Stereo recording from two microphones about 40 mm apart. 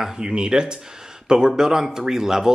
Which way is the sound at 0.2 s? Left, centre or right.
Centre.